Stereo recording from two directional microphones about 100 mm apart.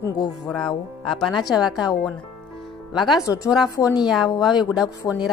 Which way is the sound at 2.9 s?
5° right (ahead or behind).